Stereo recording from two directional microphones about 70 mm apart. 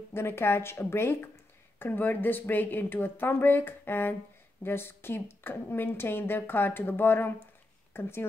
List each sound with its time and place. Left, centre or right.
0.1 s a woman's voice: left